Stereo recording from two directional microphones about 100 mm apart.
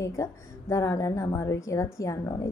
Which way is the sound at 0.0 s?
30° left (ahead or behind).